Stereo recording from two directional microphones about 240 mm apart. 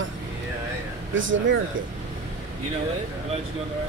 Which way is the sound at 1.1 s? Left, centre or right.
Right.